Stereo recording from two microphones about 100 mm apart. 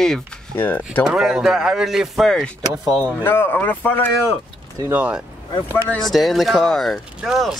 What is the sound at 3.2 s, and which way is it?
Speech, 20° left (ahead or behind).